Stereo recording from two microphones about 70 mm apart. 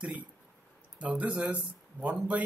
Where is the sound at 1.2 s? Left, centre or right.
Centre.